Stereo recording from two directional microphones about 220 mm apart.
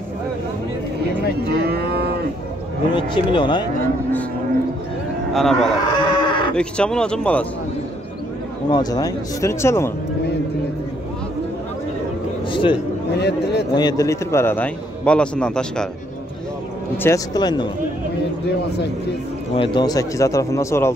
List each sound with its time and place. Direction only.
1.5 s livestock: 45° right (ahead or behind)
3.0 s speech: 20° left (ahead or behind)
5.3 s speech: centre (ahead or behind)
5.9 s livestock: 20° left (ahead or behind)
6.5 s speech: 5° left (ahead or behind)
8.6 s a man's voice: 20° left (ahead or behind)
13.2 s speech: 50° left (ahead or behind)
13.7 s a man's voice: 15° left (ahead or behind)
16.9 s a man's voice: 10° left (ahead or behind)
19.5 s a man's voice: 20° left (ahead or behind)